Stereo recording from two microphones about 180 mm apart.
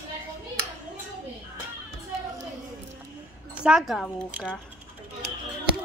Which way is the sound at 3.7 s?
Centre (ahead or behind).